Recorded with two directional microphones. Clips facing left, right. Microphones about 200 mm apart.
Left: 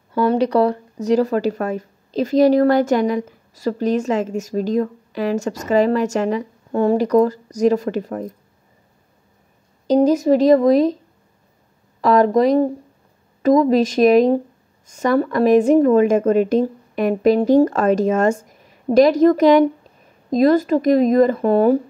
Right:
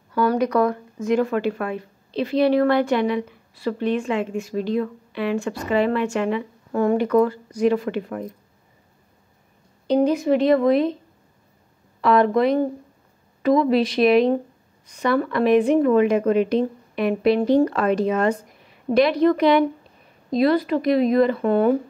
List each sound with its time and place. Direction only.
0.1 s speech: 25° left (ahead or behind)
9.8 s speech: 40° left (ahead or behind)
12.0 s a woman's voice: 40° left (ahead or behind)